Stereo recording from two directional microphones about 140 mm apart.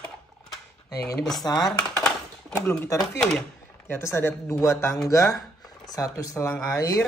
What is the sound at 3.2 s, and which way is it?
Speech, 5° left (ahead or behind).